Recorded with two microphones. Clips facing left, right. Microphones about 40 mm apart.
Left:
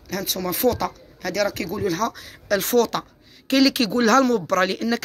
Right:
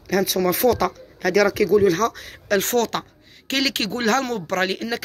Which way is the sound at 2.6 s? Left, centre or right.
Right.